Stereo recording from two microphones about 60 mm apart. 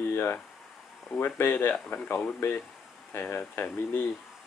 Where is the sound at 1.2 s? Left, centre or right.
Left.